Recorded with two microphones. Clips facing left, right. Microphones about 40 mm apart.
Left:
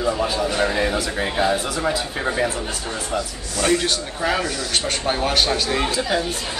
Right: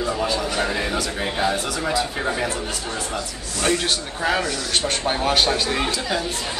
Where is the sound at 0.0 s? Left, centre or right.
Centre.